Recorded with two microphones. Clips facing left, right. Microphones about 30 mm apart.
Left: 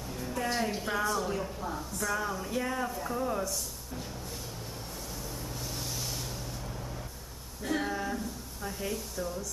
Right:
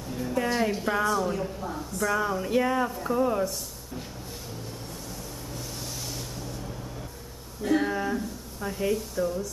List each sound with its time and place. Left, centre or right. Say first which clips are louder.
0.1 s a woman's voice: right 6 dB; centre
2.0 s a sound: right 6 dB; centre
2.9 s speech: right 7 dB; centre
7.6 s speech: right 6 dB; centre